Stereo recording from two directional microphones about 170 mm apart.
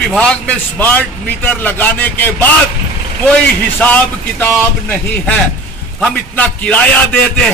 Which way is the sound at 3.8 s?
10° left (ahead or behind).